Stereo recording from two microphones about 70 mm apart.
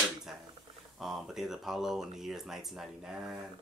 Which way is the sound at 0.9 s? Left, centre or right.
Centre.